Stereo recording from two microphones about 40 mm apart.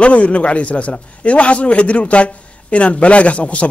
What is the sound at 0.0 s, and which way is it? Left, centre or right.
A man's voice, left.